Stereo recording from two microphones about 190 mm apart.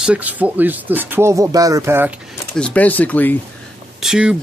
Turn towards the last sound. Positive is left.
turn(degrees=-5)  # may be behind; listen again after turning